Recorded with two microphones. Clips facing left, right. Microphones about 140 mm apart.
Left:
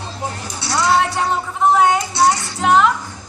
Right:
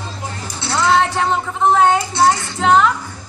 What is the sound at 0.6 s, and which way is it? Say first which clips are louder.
Speech: right 1 dB; 15° left (ahead or behind).